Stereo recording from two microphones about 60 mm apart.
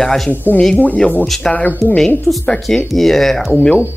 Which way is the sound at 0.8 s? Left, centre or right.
Left.